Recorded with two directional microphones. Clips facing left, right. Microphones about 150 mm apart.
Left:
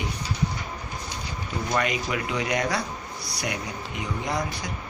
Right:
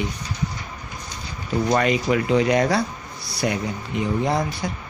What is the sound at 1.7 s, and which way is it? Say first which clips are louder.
Speech: right 6 dB; 35° right (ahead or behind).